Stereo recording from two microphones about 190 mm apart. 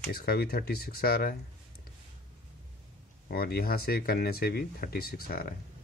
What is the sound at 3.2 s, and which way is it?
Speech, 55° left (ahead or behind).